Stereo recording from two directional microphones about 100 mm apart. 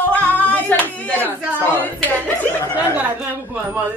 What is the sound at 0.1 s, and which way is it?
Clapping, 15° left (ahead or behind).